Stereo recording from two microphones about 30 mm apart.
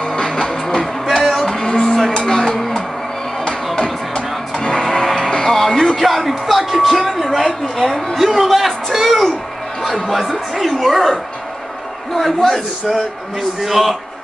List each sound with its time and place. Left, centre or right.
0.0 s music: left
0.4 s music: centre
1.0 s music: centre
1.5 s music: left
2.1 s a sound: centre
4.1 s music: left
5.0 s music: centre
5.9 s music: centre
7.0 s a sound: centre
10.6 s a man's voice: centre
12.2 s a man's voice: centre